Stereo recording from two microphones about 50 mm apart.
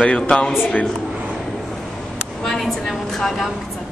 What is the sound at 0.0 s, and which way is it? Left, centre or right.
Speech, centre.